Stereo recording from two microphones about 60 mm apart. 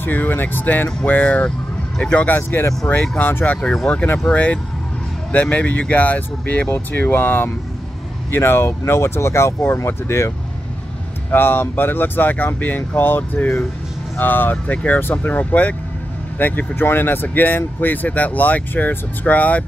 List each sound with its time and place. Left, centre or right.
0.0 s speech: left
2.2 s speech: left
3.6 s speech: centre; by 10.3 s left
11.3 s speech: left